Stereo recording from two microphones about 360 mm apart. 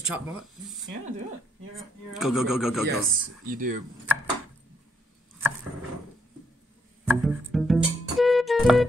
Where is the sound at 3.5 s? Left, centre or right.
Right.